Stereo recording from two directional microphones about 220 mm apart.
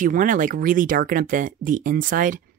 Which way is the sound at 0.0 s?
35° right (ahead or behind).